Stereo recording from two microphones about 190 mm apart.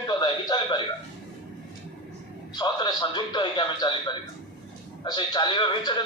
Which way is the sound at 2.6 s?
20° left (ahead or behind).